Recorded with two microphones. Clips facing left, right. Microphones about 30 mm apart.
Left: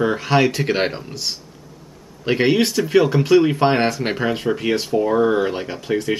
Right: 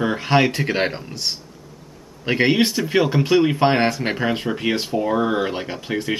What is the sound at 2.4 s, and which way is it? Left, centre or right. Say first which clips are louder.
Speech: even; centre.